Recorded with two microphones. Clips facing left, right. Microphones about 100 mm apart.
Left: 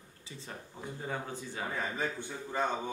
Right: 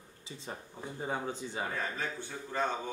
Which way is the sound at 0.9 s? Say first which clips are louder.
Right 3 dB; 20° right (ahead or behind).